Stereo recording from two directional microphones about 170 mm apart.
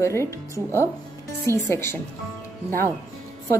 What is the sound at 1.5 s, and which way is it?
Speech, 15° left (ahead or behind).